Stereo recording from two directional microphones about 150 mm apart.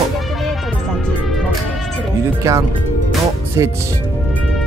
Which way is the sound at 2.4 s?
20° right (ahead or behind).